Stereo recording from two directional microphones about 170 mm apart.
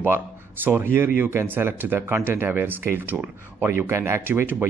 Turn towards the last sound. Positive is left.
turn(degrees=-15)  # may be behind; listen again after turning